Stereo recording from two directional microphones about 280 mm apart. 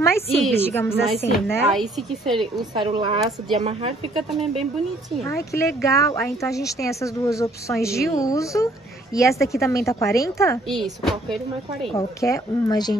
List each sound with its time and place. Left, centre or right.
0.0 s speech: centre
2.3 s a woman's voice: centre
5.8 s speech: centre
11.9 s speech: centre